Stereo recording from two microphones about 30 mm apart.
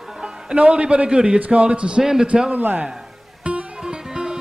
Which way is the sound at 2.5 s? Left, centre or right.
Right.